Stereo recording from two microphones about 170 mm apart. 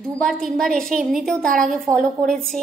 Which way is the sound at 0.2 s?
Centre (ahead or behind).